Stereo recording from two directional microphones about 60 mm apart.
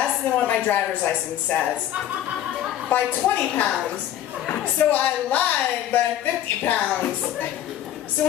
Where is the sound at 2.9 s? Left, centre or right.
Left.